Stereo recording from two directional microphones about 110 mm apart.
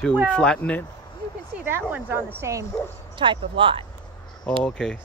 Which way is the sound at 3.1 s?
45° right (ahead or behind).